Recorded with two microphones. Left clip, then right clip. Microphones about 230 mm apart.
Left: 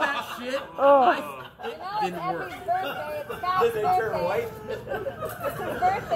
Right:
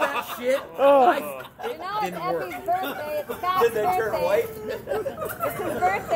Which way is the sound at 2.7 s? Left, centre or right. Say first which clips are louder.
Right 1 dB; right.